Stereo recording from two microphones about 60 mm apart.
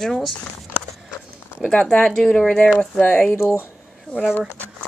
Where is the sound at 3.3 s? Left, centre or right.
Left.